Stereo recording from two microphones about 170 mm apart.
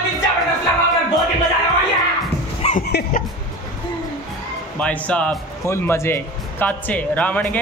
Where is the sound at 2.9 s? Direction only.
75° left (ahead or behind).